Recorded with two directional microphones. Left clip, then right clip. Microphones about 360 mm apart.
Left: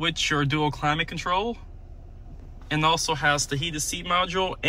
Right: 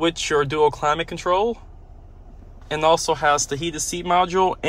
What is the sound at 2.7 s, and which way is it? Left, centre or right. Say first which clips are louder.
Speech: right 5 dB; centre.